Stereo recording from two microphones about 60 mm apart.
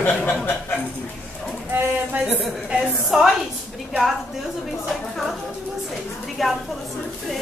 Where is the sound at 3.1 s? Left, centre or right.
Centre.